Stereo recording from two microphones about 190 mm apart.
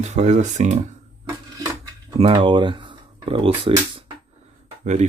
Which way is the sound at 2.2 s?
35° right (ahead or behind).